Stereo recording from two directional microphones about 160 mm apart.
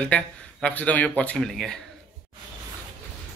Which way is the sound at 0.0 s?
5° left (ahead or behind).